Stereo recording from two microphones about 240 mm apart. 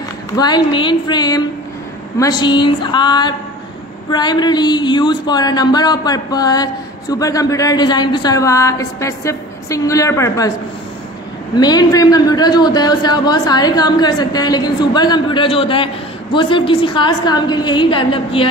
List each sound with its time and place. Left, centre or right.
0.4 s speech: centre
11.5 s a woman's voice: centre